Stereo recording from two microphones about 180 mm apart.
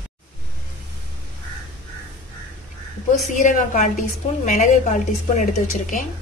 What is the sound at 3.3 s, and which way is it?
A woman's voice, 45° left (ahead or behind).